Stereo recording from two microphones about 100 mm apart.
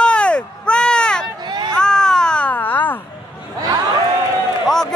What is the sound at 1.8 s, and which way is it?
Baby cry, 5° left (ahead or behind).